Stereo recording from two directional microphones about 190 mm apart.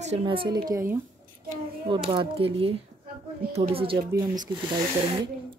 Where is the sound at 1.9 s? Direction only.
25° right (ahead or behind).